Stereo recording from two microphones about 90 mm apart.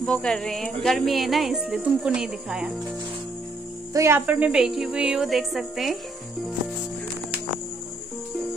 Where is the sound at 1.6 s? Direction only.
10° right (ahead or behind).